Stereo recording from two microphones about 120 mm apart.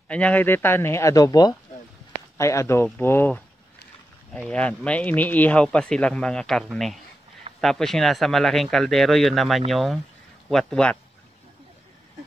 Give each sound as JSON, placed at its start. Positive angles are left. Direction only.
{"t": 0.1, "sound": "speech", "side_deg": 10}